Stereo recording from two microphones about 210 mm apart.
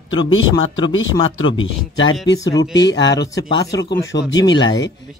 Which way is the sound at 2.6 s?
55° left (ahead or behind).